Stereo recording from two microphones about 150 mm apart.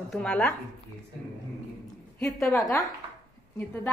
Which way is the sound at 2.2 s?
20° left (ahead or behind).